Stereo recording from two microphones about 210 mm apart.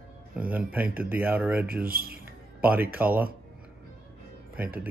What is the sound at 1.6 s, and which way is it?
Speech, 45° right (ahead or behind).